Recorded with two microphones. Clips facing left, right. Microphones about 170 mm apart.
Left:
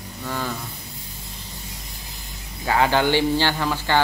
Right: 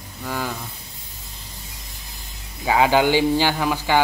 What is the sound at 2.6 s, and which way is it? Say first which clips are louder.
A man's voice: right 2 dB; 15° right (ahead or behind).